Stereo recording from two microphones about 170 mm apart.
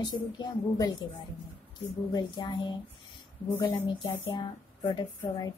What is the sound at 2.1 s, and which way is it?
Speech, 25° left (ahead or behind).